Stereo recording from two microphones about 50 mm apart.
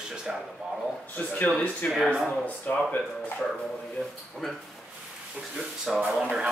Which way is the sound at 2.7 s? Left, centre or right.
Left.